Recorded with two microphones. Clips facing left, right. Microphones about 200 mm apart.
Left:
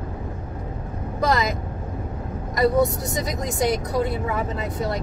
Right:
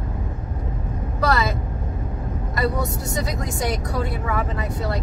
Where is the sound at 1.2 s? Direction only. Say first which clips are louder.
Even; 15° left (ahead or behind).